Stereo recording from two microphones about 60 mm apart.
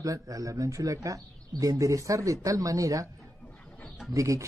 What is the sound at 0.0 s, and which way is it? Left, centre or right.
Speech, right.